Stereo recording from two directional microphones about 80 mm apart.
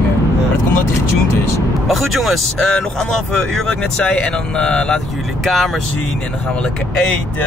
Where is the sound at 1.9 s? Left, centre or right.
Centre.